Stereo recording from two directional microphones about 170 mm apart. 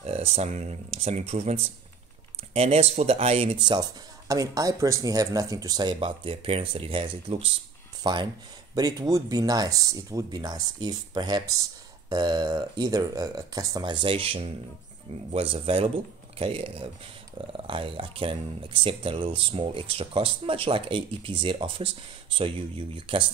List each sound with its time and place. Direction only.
0.0 s speech: 35° right (ahead or behind)